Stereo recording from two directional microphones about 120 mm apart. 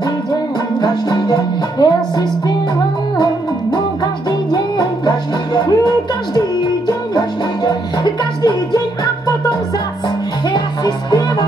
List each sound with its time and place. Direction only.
0.3 s music: 35° left (ahead or behind)
3.7 s music: 35° left (ahead or behind)
10.5 s music: 35° left (ahead or behind)